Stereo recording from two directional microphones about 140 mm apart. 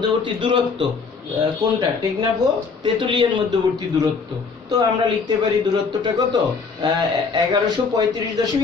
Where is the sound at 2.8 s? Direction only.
35° right (ahead or behind).